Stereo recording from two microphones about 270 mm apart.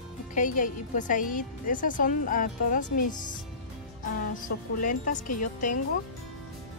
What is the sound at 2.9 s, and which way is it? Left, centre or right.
Speech, left.